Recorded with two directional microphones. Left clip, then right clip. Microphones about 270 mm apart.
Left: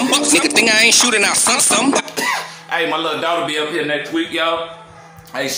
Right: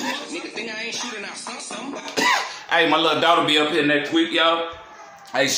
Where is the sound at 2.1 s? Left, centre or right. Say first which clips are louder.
Even; centre.